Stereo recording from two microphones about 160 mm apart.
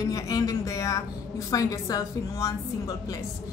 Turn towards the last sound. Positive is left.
turn(degrees=20)  # may be behind; listen again after turning